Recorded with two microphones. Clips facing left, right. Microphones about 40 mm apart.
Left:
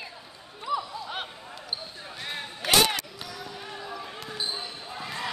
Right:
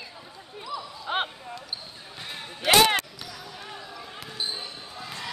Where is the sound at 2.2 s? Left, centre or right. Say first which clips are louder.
Left 3 dB; centre.